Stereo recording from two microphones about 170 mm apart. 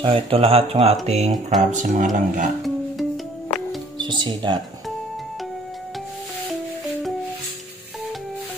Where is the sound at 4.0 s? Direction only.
25° right (ahead or behind).